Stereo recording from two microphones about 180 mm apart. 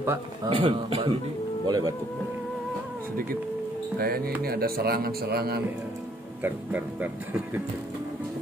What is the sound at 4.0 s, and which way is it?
A man's voice, 55° right (ahead or behind).